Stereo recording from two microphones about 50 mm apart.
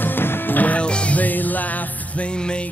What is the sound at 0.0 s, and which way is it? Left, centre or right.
Music, left.